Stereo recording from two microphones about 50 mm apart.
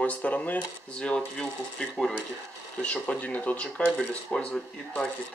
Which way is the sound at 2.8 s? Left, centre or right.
Left.